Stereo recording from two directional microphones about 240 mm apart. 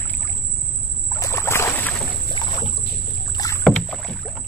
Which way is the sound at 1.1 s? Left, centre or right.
Centre.